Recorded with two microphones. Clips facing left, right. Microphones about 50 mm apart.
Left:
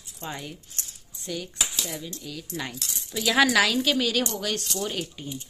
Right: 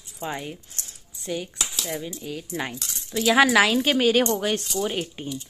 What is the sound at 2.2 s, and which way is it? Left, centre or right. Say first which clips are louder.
Speech: right 4 dB; right.